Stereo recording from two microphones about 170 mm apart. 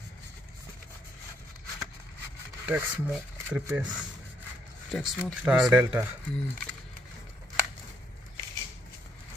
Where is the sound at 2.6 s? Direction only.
10° right (ahead or behind).